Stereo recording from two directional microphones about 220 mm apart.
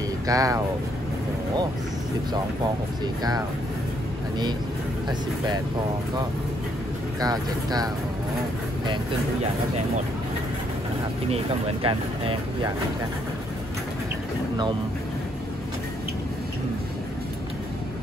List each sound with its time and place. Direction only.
0.3 s speech: 15° right (ahead or behind)
3.2 s speech: 15° right (ahead or behind)
7.2 s speech: 15° right (ahead or behind)
11.2 s speech: 25° right (ahead or behind)